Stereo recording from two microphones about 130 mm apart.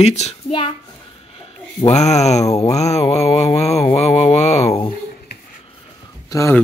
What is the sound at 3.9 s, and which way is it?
Mantra, 55° left (ahead or behind).